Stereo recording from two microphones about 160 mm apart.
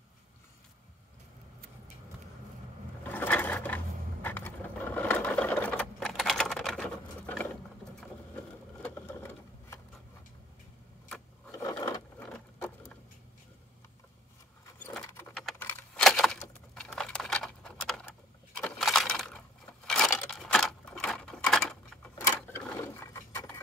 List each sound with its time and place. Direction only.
3.1 s sewing machine: 10° left (ahead or behind)
8.8 s sewing machine: 15° left (ahead or behind)
11.1 s rub: 5° left (ahead or behind)
11.5 s a sound: 20° left (ahead or behind)
12.2 s sewing machine: 10° left (ahead or behind)
14.8 s keys jangling: 10° left (ahead or behind)
15.6 s a sound: 5° left (ahead or behind)
22.3 s clock: 15° left (ahead or behind)